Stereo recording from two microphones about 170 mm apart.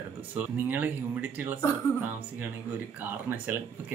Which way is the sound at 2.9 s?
10° right (ahead or behind).